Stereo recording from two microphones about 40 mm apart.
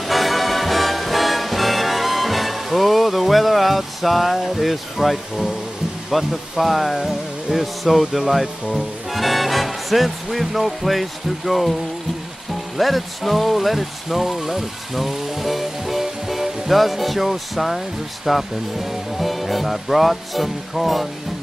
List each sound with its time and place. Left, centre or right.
0.0 s music: centre
6.0 s speech: centre
12.7 s speech: centre